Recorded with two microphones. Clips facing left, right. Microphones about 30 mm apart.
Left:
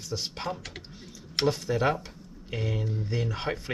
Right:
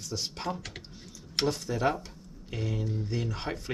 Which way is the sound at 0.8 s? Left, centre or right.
Centre.